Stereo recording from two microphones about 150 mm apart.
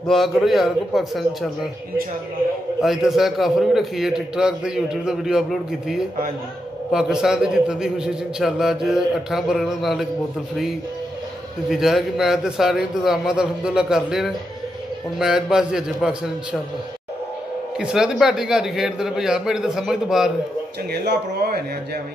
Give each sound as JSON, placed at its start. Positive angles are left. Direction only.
{"t": 0.0, "sound": "a man's voice", "side_deg": 0}
{"t": 2.8, "sound": "a man's voice", "side_deg": -5}
{"t": 11.7, "sound": "a man's voice", "side_deg": -5}
{"t": 17.7, "sound": "a man's voice", "side_deg": -5}
{"t": 20.9, "sound": "speech", "side_deg": -90}